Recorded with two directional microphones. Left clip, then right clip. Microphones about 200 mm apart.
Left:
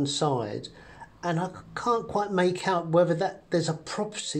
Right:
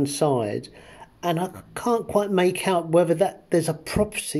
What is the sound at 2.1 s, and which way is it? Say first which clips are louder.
Speech: right 4 dB; 50° right (ahead or behind).